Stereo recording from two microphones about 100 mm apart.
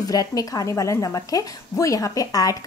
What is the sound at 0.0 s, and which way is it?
A woman's voice, 40° left (ahead or behind).